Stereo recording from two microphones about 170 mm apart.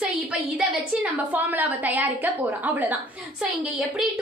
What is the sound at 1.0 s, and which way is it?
A woman's voice, 10° right (ahead or behind).